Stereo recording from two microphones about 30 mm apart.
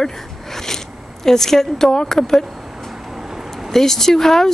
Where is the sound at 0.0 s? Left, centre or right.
Centre.